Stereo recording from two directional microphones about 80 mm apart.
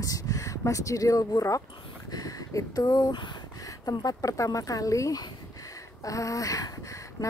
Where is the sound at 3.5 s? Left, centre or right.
Left.